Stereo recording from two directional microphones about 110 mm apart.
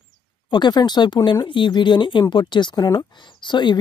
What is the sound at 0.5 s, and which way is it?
Speech, 40° left (ahead or behind).